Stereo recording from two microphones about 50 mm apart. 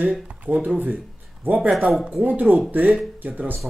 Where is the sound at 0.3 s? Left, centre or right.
Right.